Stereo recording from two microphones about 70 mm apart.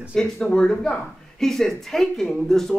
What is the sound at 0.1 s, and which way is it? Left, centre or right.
Speech, centre.